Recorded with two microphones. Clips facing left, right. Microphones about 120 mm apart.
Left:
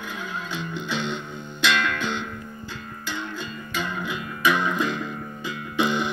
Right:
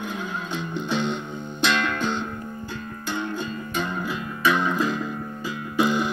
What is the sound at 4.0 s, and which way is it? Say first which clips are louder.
Music: right 1 dB; 35° right (ahead or behind).